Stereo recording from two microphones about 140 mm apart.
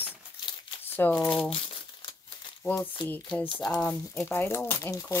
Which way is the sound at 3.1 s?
10° left (ahead or behind).